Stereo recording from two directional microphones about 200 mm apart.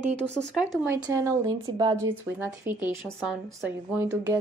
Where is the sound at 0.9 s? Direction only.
15° right (ahead or behind).